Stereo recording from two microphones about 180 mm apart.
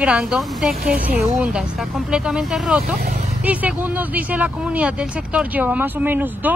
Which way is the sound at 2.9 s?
55° right (ahead or behind).